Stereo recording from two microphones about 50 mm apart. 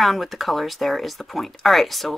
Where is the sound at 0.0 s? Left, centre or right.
Centre.